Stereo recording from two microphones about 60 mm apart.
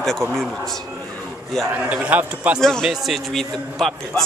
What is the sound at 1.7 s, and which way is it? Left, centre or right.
Speech, right.